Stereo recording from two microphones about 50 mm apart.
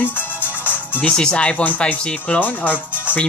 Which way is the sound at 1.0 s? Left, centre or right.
Centre.